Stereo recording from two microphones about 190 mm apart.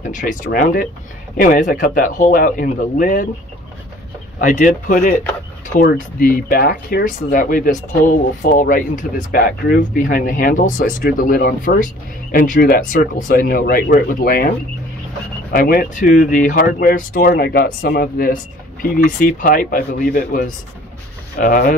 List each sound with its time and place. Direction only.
0.0 s speech: 45° left (ahead or behind)
4.4 s speech: 45° left (ahead or behind)
15.5 s speech: 50° left (ahead or behind)